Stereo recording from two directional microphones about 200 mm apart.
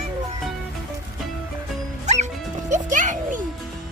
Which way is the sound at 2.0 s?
35° right (ahead or behind).